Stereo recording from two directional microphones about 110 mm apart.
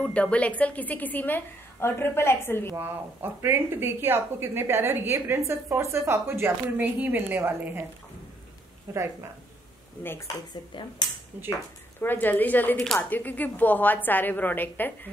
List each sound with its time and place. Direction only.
0.1 s a woman's voice: 10° left (ahead or behind)
2.7 s a woman's voice: 20° right (ahead or behind)
8.9 s a woman's voice: 25° right (ahead or behind)
10.0 s speech: 25° left (ahead or behind)
10.7 s speech: 50° left (ahead or behind)
11.3 s speech: 15° right (ahead or behind)
12.0 s a woman's voice: 15° left (ahead or behind)